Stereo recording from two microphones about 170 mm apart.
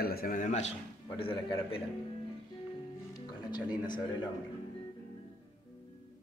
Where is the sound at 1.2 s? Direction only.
30° left (ahead or behind).